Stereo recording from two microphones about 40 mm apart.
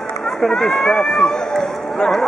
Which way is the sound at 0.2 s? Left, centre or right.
Centre.